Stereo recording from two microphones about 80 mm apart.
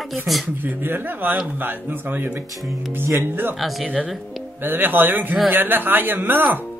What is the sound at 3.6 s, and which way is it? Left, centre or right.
Speech, centre.